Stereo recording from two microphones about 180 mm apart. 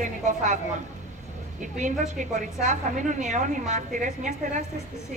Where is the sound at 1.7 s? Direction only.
45° right (ahead or behind).